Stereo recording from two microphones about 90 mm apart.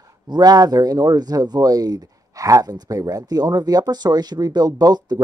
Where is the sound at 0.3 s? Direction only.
50° right (ahead or behind).